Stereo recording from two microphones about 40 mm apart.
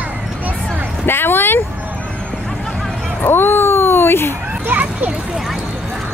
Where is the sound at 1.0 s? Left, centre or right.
Left.